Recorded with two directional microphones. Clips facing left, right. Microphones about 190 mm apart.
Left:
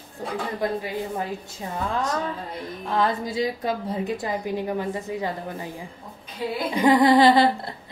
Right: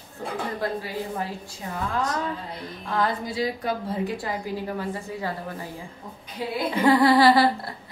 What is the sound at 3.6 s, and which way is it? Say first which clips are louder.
Speech: left 1 dB; 20° left (ahead or behind).